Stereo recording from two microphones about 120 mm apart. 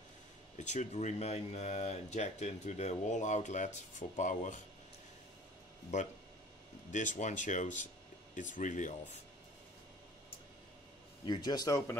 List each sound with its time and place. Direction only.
0.6 s speech: 75° left (ahead or behind)
5.9 s speech: 75° left (ahead or behind)
6.9 s speech: 90° left
11.2 s speech: 35° left (ahead or behind)